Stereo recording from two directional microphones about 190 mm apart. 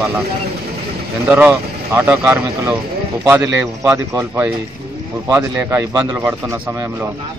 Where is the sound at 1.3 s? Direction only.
10° right (ahead or behind).